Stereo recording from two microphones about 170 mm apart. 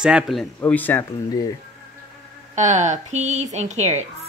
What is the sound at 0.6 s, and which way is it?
Speech, 10° left (ahead or behind).